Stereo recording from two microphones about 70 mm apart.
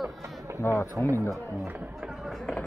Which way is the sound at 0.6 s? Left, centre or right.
Left.